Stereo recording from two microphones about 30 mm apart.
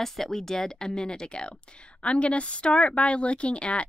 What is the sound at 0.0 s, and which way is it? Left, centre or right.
A woman's voice, centre.